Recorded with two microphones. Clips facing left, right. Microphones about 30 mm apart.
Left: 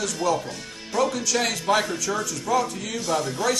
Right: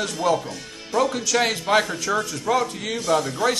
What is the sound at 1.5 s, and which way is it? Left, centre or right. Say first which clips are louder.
A man's voice: right 2 dB; right.